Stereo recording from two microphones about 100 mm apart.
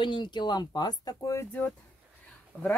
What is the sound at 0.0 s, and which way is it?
Speech, 50° left (ahead or behind).